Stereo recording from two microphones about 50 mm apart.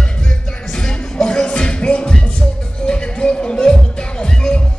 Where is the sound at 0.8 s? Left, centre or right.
Centre.